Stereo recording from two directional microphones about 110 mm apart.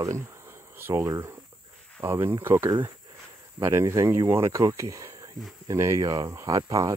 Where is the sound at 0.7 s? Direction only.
20° right (ahead or behind).